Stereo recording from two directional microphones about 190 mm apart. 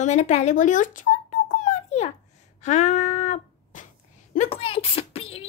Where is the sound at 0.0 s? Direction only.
40° left (ahead or behind).